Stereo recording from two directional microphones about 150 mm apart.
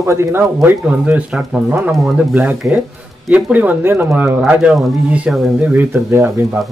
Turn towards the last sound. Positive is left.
turn(degrees=-15)  # may be behind; listen again after turning